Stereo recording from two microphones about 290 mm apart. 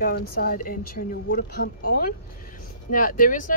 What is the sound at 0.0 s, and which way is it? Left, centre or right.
Speech, left.